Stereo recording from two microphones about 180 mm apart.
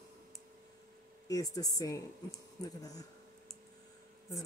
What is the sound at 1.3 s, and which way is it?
A woman's voice, 20° left (ahead or behind).